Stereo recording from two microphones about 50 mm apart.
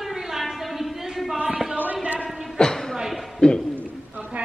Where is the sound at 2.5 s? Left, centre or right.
Centre.